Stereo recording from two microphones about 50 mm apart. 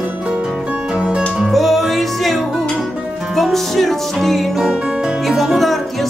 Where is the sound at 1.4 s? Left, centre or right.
Centre.